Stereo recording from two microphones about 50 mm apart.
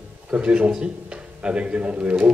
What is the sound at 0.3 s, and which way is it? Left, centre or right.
A man's voice, right.